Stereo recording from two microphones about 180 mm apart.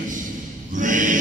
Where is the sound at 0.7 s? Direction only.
45° right (ahead or behind).